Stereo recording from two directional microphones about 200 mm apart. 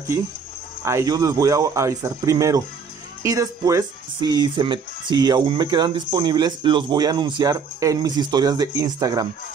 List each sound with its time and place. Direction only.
0.8 s speech: 15° right (ahead or behind)